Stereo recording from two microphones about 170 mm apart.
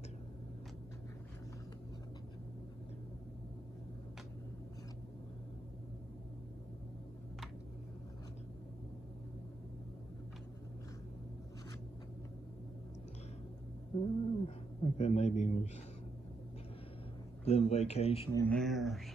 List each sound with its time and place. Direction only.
13.9 s a man's voice: 35° left (ahead or behind)
17.5 s speech: 40° left (ahead or behind)
18.5 s speech: centre (ahead or behind)